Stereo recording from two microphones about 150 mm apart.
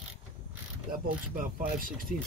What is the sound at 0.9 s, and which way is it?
Speech, 65° right (ahead or behind).